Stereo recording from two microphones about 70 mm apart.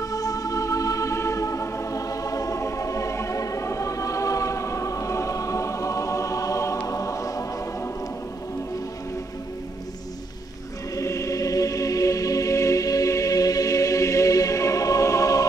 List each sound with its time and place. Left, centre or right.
0.0 s music: left
11.0 s music: left